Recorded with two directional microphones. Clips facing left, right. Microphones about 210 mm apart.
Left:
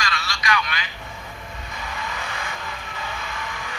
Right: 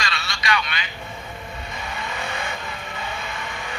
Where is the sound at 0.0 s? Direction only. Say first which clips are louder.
Left 1 dB; 25° right (ahead or behind).